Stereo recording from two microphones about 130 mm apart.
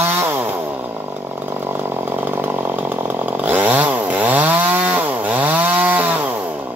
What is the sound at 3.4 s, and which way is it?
Chainsaw, 15° right (ahead or behind).